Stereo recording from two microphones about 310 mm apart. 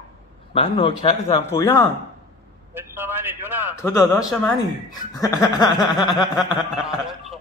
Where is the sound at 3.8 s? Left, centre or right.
Centre.